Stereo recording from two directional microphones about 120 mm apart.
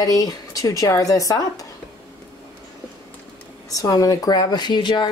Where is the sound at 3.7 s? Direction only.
30° left (ahead or behind).